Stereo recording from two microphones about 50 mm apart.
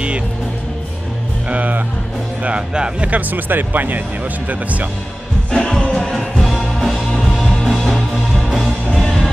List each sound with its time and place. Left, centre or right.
1.5 s music: right
2.4 s speech: centre
3.1 s speech: right
5.5 s music: centre
6.1 s music: centre